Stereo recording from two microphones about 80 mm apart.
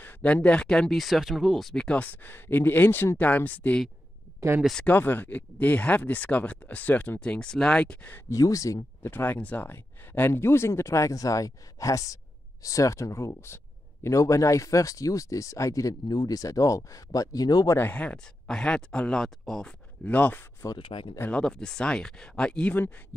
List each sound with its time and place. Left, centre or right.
0.0 s speech: centre
1.9 s speech: centre
4.8 s speech: left
8.3 s speech: left
9.0 s speech: left
17.7 s speech: centre
20.1 s speech: centre
20.6 s speech: left
21.3 s speech: centre